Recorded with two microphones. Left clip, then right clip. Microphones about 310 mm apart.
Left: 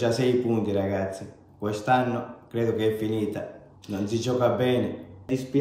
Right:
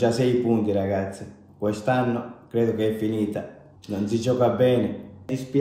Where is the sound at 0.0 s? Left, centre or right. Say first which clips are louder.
Right 2 dB; centre.